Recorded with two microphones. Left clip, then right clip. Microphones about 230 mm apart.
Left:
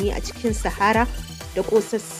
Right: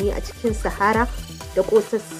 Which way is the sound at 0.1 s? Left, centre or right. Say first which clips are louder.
Right 1 dB; centre.